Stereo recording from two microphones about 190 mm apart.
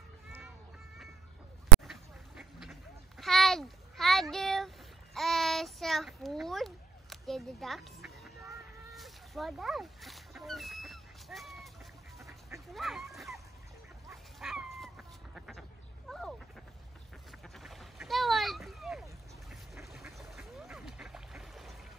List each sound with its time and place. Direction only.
1.9 s duck: centre (ahead or behind)
8.9 s a sound: centre (ahead or behind)
12.3 s duck: 15° right (ahead or behind)
12.7 s speech: centre (ahead or behind)
14.1 s dog: centre (ahead or behind)
16.1 s a sound: centre (ahead or behind)
17.3 s duck: centre (ahead or behind)
19.5 s quack: centre (ahead or behind)